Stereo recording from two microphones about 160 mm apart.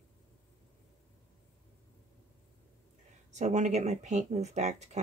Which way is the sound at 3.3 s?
50° right (ahead or behind).